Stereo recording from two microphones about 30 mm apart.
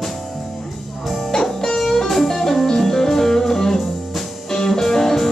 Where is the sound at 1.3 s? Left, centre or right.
Centre.